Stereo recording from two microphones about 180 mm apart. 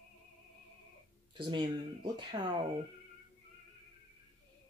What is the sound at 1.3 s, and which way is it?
Speech, 25° right (ahead or behind).